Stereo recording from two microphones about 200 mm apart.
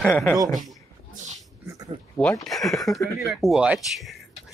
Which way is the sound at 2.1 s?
5° left (ahead or behind).